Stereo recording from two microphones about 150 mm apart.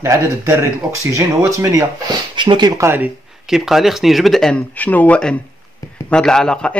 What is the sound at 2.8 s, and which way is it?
Speech, 15° right (ahead or behind).